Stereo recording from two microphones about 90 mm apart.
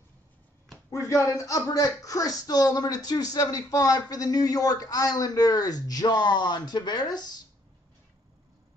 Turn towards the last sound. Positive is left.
turn(degrees=50)  # may be behind; listen again after turning